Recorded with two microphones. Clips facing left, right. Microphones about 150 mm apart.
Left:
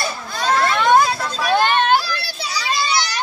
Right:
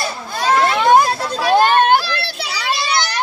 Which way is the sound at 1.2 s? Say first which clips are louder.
Right 4 dB; 30° right (ahead or behind).